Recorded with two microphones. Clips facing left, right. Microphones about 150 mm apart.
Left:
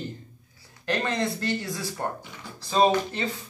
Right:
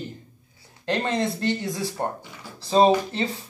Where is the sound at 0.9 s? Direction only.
20° right (ahead or behind).